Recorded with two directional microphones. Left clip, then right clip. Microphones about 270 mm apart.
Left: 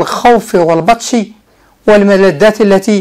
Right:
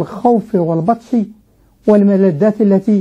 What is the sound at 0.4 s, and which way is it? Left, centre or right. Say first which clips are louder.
A woman's voice: left 7 dB; centre.